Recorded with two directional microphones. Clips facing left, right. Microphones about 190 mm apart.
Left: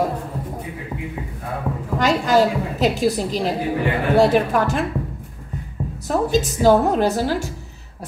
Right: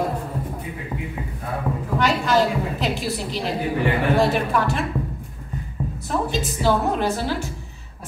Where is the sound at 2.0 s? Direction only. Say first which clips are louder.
Left 3 dB; 40° left (ahead or behind).